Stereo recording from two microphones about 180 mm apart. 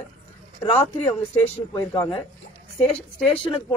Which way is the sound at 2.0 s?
25° left (ahead or behind).